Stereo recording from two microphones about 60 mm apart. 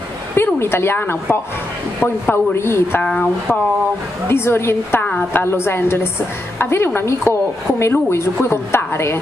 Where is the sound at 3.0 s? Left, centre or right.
Centre.